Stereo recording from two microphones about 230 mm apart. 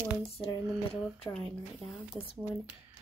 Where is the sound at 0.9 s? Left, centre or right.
Left.